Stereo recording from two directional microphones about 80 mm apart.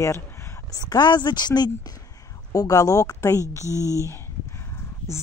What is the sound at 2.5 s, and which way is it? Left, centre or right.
A woman's voice, left.